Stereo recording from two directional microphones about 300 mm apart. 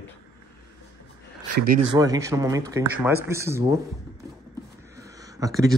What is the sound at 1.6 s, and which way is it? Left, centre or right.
Speech, right.